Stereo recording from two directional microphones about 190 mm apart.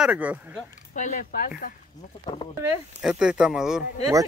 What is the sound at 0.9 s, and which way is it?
Speech, 40° left (ahead or behind).